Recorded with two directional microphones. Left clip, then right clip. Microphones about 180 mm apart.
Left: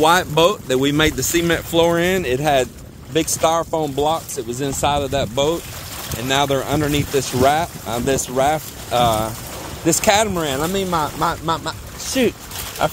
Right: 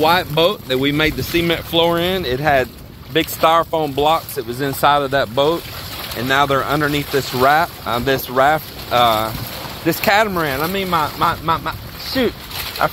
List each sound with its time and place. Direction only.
0.0 s speech: 35° left (ahead or behind)
3.3 s speech: 10° left (ahead or behind)
6.2 s speech: 20° left (ahead or behind)